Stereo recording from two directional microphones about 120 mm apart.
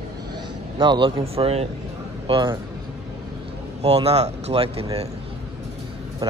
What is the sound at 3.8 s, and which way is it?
Speech, 60° right (ahead or behind).